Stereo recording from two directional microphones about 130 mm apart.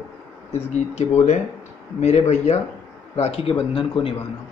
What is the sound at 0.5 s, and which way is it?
Speech, 55° left (ahead or behind).